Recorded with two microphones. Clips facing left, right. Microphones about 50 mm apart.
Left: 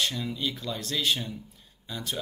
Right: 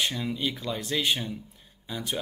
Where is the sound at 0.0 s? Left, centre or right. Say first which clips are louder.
Right 1 dB; centre.